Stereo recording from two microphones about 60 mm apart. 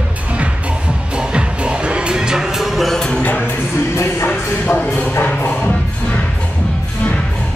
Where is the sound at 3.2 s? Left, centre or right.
Left.